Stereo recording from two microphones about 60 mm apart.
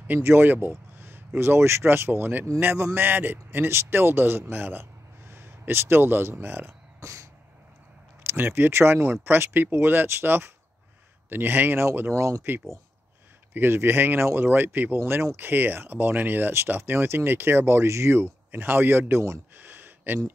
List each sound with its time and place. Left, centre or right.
0.2 s speech: right
7.0 s throat clearing: right
8.3 s speech: right
13.5 s speech: right
19.5 s a sound: right